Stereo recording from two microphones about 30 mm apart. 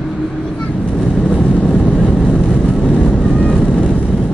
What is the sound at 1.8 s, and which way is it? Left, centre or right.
Vehicle, left.